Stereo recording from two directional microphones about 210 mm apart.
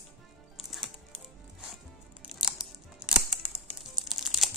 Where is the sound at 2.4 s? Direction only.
5° right (ahead or behind).